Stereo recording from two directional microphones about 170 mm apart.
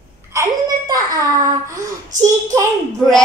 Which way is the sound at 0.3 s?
20° right (ahead or behind).